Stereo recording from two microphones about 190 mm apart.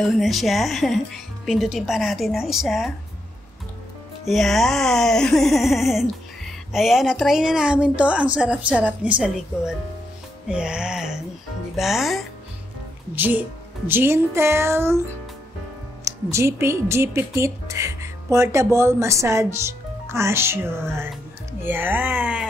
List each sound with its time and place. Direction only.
0.0 s speech: centre (ahead or behind)
4.3 s speech: centre (ahead or behind)
13.1 s music: 10° right (ahead or behind)
16.0 s speech: 15° right (ahead or behind)
21.6 s music: 10° right (ahead or behind)